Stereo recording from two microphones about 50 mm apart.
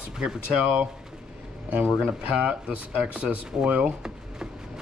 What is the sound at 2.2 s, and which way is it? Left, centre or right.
Speech, right.